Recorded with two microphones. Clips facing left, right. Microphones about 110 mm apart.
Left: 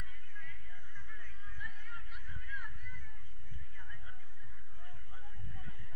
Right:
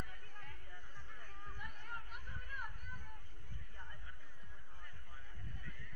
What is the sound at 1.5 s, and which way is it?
Chatter, 55° right (ahead or behind).